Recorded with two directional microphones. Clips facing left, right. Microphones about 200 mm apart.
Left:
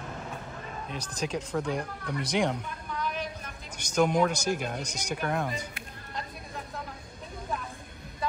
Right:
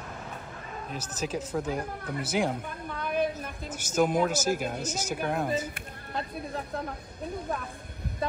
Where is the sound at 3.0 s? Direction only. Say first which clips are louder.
Right 8 dB; 55° right (ahead or behind).